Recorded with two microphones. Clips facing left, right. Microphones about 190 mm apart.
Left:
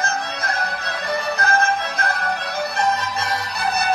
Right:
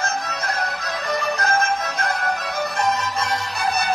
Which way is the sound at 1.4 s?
35° left (ahead or behind).